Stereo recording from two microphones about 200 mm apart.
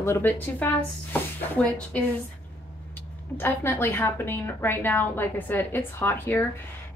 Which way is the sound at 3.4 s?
10° left (ahead or behind).